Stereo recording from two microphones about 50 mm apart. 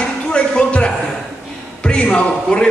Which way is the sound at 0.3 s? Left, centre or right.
Left.